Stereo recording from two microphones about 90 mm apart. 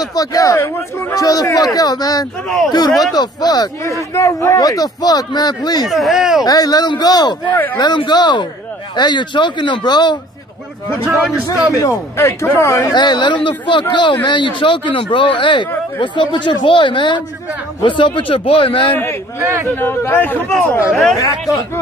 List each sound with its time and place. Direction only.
0.0 s speech: 45° left (ahead or behind)
2.9 s speech: centre (ahead or behind)
3.2 s speech: 50° left (ahead or behind)
4.1 s speech: 35° left (ahead or behind); by 5.9 s 50° left (ahead or behind)
5.9 s speech: centre (ahead or behind)
6.4 s speech: 45° left (ahead or behind)
11.8 s speech: 35° left (ahead or behind)
12.9 s a man's voice: 55° left (ahead or behind); by 18.9 s 75° left (ahead or behind)
19.4 s speech: 30° right (ahead or behind)
19.7 s speech: 25° left (ahead or behind)
20.9 s speech: 5° left (ahead or behind)
21.2 s speech: 40° left (ahead or behind)